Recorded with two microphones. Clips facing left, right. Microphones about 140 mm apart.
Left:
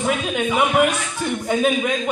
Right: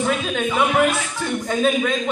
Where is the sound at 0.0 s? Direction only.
15° left (ahead or behind).